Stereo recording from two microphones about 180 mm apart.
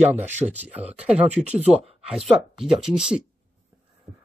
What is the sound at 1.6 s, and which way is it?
Speech, 35° right (ahead or behind).